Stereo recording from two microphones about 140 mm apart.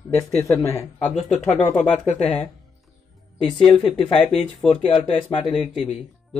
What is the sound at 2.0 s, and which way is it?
Speech, 55° left (ahead or behind).